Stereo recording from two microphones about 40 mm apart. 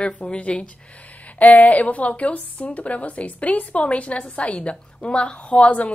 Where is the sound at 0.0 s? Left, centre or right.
Left.